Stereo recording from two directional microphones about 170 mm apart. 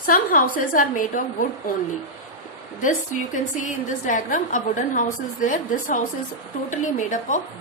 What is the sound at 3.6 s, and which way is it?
A woman's voice, 50° left (ahead or behind).